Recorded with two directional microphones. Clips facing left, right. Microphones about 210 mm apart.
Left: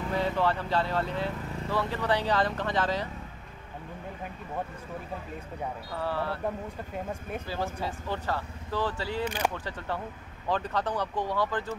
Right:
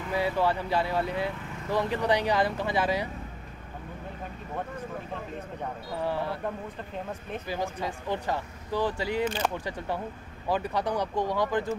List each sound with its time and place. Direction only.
0.1 s speech: 10° right (ahead or behind)
5.9 s speech: 15° right (ahead or behind)
7.1 s speech: 10° left (ahead or behind)
7.4 s speech: 15° right (ahead or behind)